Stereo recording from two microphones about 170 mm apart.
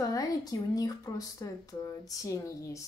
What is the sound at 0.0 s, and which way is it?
Speech, 20° left (ahead or behind).